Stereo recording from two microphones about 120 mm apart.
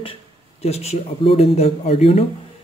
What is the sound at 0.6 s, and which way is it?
Speech, 65° left (ahead or behind).